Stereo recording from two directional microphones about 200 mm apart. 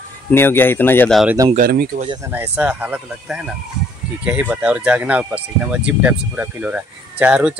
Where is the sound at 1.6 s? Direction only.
50° right (ahead or behind).